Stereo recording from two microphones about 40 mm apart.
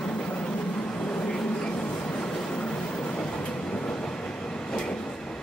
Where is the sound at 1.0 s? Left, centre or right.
Centre.